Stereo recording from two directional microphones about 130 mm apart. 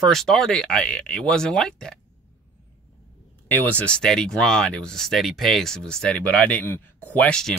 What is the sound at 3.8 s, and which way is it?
Speech, 5° left (ahead or behind).